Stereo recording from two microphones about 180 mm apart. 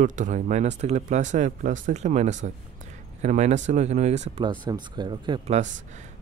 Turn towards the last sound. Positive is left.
turn(degrees=-45)  # may be behind; listen again after turning